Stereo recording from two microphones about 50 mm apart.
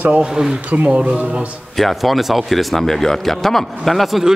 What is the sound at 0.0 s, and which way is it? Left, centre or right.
Speech, right.